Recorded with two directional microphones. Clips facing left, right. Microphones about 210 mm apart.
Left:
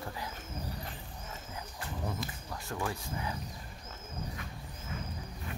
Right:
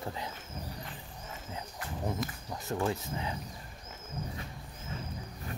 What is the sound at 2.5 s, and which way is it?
Speech, 20° right (ahead or behind).